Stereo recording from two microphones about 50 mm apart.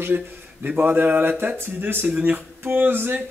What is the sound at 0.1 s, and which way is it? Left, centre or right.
Speech, right.